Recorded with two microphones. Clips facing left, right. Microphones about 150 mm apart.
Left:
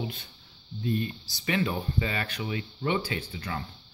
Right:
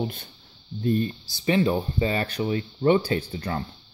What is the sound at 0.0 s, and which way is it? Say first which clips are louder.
Speech: right 6 dB; 50° right (ahead or behind).